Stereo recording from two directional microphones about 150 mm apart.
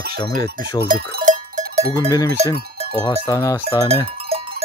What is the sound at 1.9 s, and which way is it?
Cowbell, 20° left (ahead or behind).